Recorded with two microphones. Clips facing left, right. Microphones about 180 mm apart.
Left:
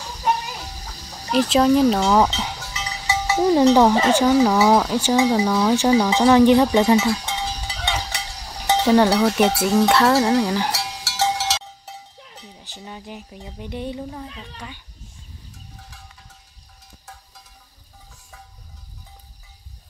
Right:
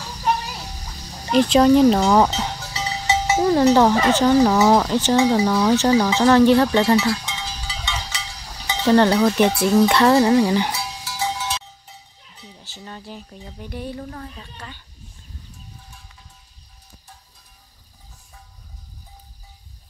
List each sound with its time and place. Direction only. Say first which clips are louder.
1.3 s cutlery: right 2 dB; centre (ahead or behind)
2.7 s music: right 4 dB; 25° right (ahead or behind)
3.7 s speech: even; 15° left (ahead or behind)
7.2 s cowbell: left 4 dB; 60° left (ahead or behind)
8.8 s cutlery: right 2 dB; 5° left (ahead or behind)
10.7 s cowbell: left 1 dB; 80° left
12.5 s speech: even; 15° left (ahead or behind)